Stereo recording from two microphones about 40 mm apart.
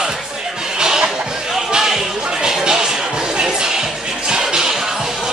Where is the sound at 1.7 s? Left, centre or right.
Centre.